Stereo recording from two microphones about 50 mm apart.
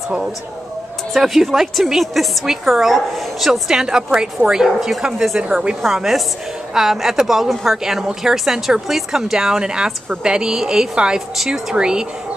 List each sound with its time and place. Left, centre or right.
1.1 s a woman's voice: centre
3.7 s speech: centre
5.9 s a woman's voice: centre